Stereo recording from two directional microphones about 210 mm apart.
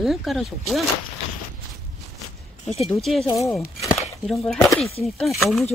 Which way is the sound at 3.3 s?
15° left (ahead or behind).